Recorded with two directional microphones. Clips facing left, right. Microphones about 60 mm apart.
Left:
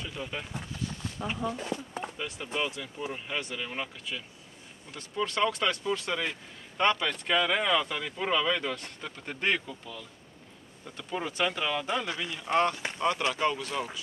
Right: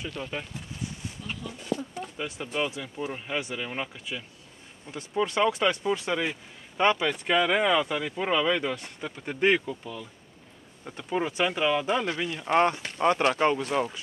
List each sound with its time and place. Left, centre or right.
0.2 s speech: centre
1.2 s speech: left
2.1 s speech: centre; by 13.8 s right